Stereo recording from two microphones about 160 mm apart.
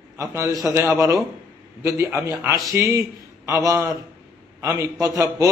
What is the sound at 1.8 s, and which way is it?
Mantra, 15° right (ahead or behind).